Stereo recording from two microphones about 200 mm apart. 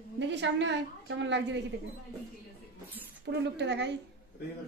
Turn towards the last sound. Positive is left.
turn(degrees=-60)  # may be behind; listen again after turning